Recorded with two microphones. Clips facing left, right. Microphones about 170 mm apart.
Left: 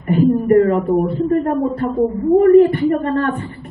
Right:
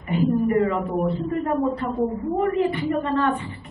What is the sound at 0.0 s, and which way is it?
A woman's voice, 50° left (ahead or behind).